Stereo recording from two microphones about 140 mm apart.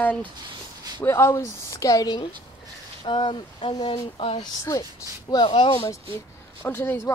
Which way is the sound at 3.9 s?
45° left (ahead or behind).